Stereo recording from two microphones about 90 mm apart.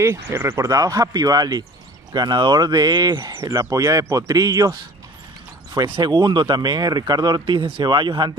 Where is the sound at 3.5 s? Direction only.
35° right (ahead or behind).